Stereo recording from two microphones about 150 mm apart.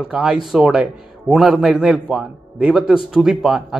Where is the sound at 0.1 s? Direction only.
Centre (ahead or behind).